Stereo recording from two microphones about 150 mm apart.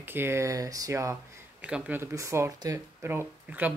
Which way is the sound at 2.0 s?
20° right (ahead or behind).